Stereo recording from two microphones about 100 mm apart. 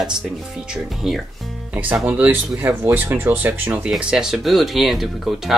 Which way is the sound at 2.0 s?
15° right (ahead or behind).